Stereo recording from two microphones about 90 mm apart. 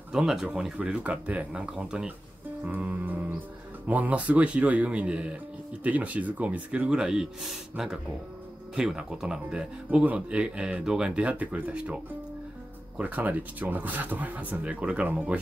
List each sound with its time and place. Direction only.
0.1 s speech: 5° right (ahead or behind)
2.6 s music: 15° right (ahead or behind)
3.8 s speech: 15° right (ahead or behind)